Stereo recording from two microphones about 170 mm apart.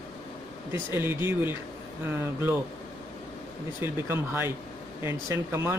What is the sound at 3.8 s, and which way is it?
Speech, 15° right (ahead or behind).